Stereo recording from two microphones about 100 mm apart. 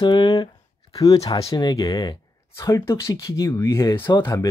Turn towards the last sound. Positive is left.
turn(degrees=30)  # may be behind; listen again after turning